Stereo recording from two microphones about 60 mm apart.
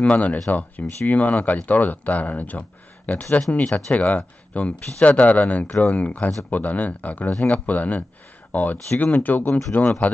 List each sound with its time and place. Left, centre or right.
0.0 s speech: left